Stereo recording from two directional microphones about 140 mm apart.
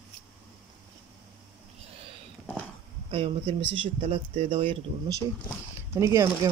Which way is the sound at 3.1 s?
40° right (ahead or behind).